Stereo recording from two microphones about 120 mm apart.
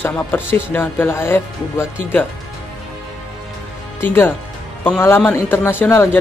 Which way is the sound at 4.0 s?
20° left (ahead or behind).